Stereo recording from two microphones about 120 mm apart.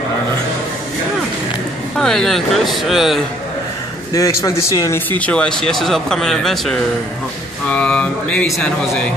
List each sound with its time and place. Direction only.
2.0 s speech: 5° left (ahead or behind)
4.1 s speech: 25° left (ahead or behind)
5.2 s speech: 10° left (ahead or behind)
7.6 s a sound: 10° left (ahead or behind)